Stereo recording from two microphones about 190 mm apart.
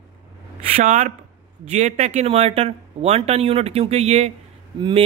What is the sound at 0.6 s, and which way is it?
Speech, 40° right (ahead or behind).